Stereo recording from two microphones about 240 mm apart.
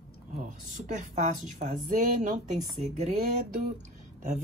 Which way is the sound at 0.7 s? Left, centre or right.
Right.